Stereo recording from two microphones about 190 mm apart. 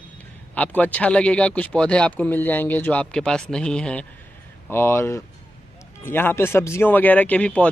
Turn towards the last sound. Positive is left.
turn(degrees=5)  # may be behind; listen again after turning